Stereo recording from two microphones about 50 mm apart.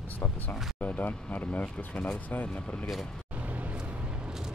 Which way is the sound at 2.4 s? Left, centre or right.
Left.